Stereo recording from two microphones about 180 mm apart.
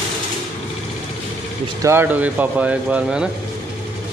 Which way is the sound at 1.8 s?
15° right (ahead or behind).